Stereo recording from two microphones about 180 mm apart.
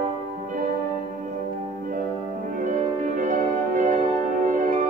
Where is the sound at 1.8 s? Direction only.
50° right (ahead or behind).